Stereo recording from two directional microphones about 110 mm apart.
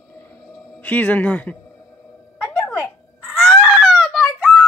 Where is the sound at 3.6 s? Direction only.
Centre (ahead or behind).